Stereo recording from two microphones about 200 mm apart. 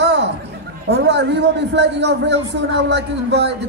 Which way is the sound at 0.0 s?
60° right (ahead or behind).